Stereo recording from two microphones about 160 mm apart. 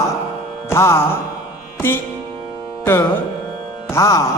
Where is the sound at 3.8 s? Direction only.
20° left (ahead or behind).